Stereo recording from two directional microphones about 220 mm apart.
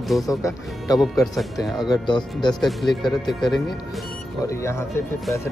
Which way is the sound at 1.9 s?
20° left (ahead or behind).